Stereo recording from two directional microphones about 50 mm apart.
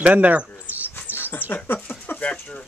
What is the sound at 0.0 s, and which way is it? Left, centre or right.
Speech, right.